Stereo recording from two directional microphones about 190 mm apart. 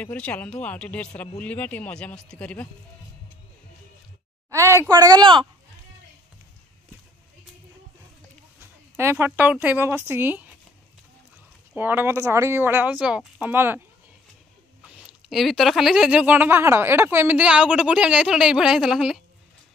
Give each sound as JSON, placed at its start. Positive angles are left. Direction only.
{"t": 0.0, "sound": "speech", "side_deg": 5}
{"t": 4.5, "sound": "speech", "side_deg": -15}
{"t": 8.5, "sound": "a woman's voice", "side_deg": -10}
{"t": 11.7, "sound": "speech", "side_deg": -10}
{"t": 15.0, "sound": "speech", "side_deg": 0}